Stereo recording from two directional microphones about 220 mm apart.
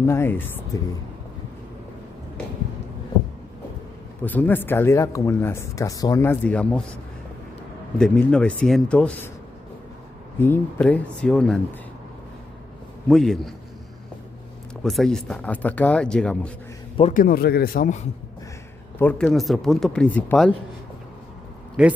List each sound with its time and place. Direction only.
0.0 s speech: 10° left (ahead or behind)
4.2 s speech: 10° left (ahead or behind)
8.0 s speech: 5° left (ahead or behind)
10.4 s speech: 5° left (ahead or behind)
13.1 s speech: centre (ahead or behind)
14.8 s speech: centre (ahead or behind)
16.9 s a man's voice: 30° left (ahead or behind)
17.2 s speech: 45° left (ahead or behind)
18.9 s speech: 5° left (ahead or behind)
21.8 s speech: 5° right (ahead or behind)